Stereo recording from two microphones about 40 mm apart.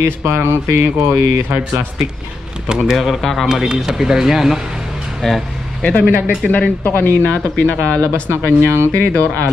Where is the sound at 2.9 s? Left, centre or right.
Centre.